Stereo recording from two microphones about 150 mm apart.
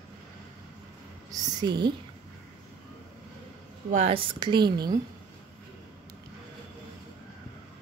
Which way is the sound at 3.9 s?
40° right (ahead or behind).